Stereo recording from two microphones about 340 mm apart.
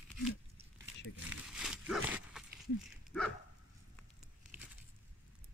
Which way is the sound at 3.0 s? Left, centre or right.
Centre.